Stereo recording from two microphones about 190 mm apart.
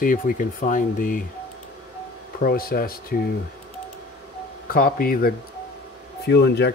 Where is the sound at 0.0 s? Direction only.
45° left (ahead or behind).